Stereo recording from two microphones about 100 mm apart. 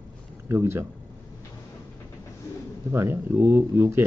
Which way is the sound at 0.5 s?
25° right (ahead or behind).